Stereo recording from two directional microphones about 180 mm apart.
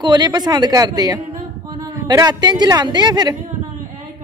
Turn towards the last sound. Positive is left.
turn(degrees=-25)  # may be behind; listen again after turning